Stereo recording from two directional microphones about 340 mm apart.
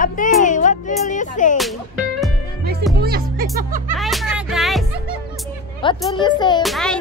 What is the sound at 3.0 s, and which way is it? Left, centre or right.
Speech, right.